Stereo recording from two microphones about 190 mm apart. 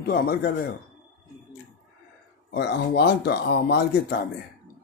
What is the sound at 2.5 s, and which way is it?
Speech, 60° left (ahead or behind).